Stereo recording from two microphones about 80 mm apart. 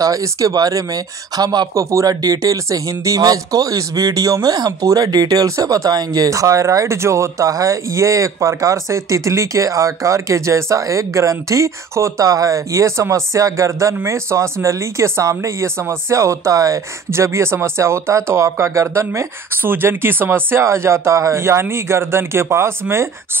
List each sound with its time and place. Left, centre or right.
0.0 s speech: right
1.8 s speech: right